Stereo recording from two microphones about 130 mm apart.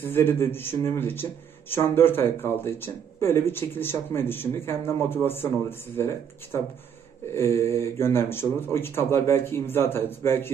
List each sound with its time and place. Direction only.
0.0 s speech: 15° left (ahead or behind)